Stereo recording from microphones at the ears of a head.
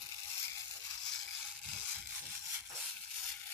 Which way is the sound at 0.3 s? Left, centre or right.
Left.